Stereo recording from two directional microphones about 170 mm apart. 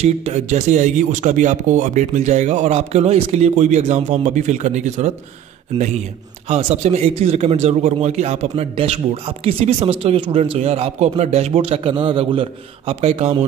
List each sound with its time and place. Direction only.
0.0 s speech: 40° right (ahead or behind)
6.5 s a man's voice: 40° right (ahead or behind)